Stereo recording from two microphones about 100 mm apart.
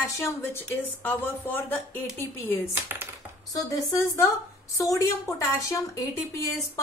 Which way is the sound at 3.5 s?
35° left (ahead or behind).